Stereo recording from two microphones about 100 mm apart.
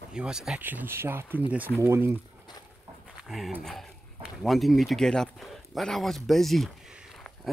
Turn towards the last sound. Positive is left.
turn(degrees=0)  # may be behind; listen again after turning